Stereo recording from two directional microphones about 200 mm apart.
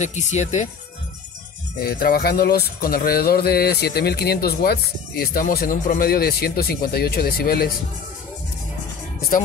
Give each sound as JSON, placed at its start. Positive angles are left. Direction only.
{"t": 0.0, "sound": "speech", "side_deg": 35}
{"t": 1.8, "sound": "speech", "side_deg": 50}